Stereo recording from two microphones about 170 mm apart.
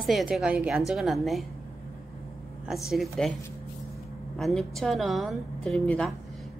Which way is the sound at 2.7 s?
Centre (ahead or behind).